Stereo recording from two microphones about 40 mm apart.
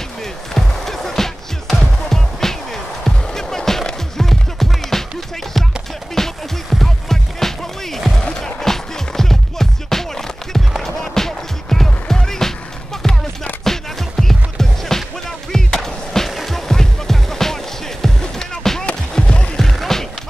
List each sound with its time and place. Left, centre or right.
0.2 s music: centre
6.1 s music: centre
19.2 s music: left
19.5 s music: centre